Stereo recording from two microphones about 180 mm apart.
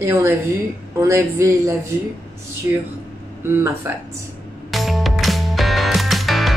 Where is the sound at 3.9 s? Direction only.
10° right (ahead or behind).